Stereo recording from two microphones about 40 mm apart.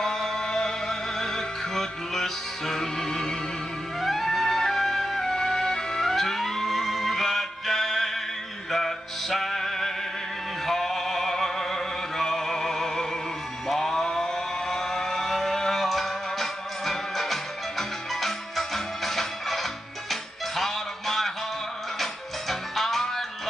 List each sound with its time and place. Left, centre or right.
0.0 s music: centre
13.7 s a sound: centre
21.9 s music: centre